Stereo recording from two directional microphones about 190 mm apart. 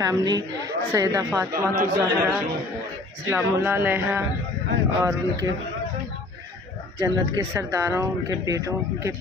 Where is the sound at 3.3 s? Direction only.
10° right (ahead or behind).